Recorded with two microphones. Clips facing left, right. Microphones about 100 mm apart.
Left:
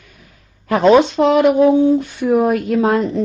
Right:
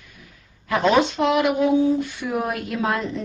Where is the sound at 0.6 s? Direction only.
40° left (ahead or behind).